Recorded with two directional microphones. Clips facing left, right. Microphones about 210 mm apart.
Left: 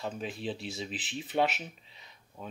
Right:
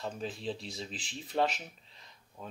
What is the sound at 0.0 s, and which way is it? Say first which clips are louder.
Speech: left 1 dB; 5° left (ahead or behind).